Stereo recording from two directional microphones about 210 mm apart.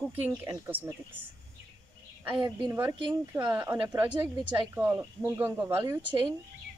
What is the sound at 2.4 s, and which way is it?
Speech, 15° right (ahead or behind).